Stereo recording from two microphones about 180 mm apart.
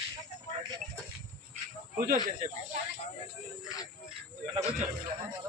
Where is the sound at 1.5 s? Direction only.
50° right (ahead or behind).